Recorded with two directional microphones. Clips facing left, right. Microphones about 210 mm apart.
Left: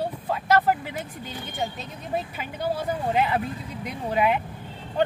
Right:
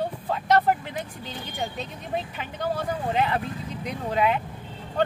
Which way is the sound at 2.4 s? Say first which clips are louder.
Left 1 dB; 10° left (ahead or behind).